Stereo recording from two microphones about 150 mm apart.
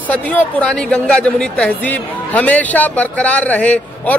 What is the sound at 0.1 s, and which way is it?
A man's voice, 10° left (ahead or behind).